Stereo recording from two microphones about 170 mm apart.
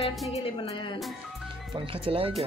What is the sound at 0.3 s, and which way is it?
Speech, 35° left (ahead or behind).